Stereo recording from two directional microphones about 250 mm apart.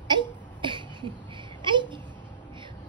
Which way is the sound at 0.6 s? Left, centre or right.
Centre.